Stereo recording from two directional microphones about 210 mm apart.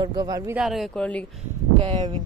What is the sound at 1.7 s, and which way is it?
Speech, 25° right (ahead or behind).